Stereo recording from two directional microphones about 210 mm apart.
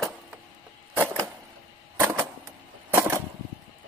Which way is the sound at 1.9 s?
10° right (ahead or behind).